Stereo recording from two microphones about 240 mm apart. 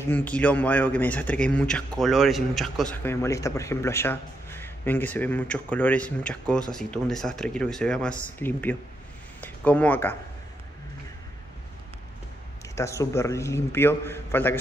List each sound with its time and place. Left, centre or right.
0.0 s a man's voice: centre
12.7 s a man's voice: centre